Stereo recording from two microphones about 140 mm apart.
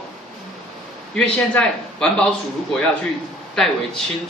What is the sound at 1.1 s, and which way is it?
A man's voice, 10° left (ahead or behind).